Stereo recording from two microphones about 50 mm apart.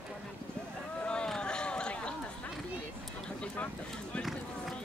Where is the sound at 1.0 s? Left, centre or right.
Left.